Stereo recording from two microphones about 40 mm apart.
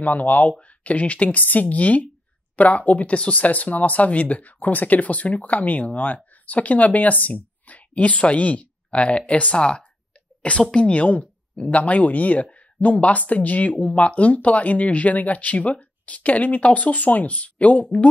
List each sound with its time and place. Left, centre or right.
0.0 s speech: left